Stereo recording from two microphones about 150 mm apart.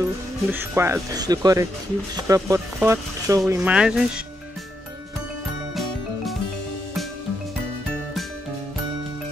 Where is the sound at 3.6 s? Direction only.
5° right (ahead or behind).